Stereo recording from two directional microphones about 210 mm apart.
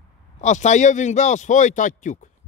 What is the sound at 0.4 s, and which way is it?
Speech, 35° left (ahead or behind).